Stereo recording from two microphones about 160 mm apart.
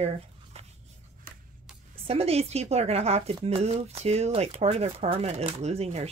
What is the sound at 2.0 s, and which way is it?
Speech, 40° right (ahead or behind).